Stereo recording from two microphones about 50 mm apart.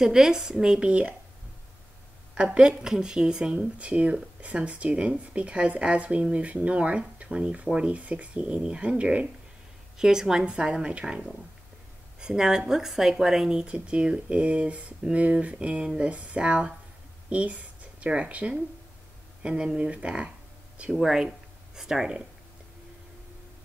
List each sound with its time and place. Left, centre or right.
0.0 s a woman's voice: centre
2.3 s speech: right
9.9 s speech: centre
21.0 s speech: centre